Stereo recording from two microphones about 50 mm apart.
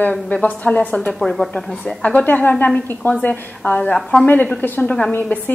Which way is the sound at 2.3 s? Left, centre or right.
Left.